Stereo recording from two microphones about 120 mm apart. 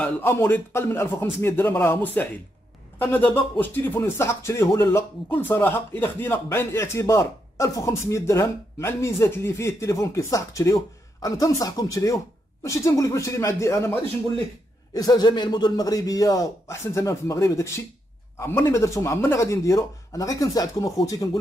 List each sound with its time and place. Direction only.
0.0 s speech: 20° left (ahead or behind)
15.0 s speech: 35° left (ahead or behind)